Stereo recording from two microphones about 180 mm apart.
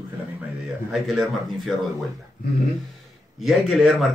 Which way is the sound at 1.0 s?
Centre (ahead or behind).